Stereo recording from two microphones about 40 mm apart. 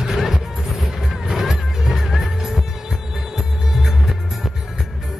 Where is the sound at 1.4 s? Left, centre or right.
Centre.